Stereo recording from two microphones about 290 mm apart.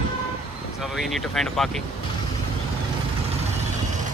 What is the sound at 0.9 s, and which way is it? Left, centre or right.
Speech, centre.